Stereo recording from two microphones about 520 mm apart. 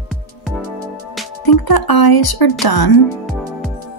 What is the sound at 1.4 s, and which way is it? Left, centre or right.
Speech, left.